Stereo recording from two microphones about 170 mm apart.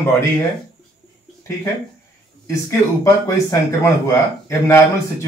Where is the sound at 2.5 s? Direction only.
20° left (ahead or behind).